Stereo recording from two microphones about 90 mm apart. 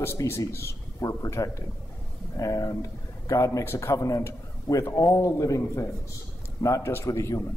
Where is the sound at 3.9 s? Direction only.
40° left (ahead or behind).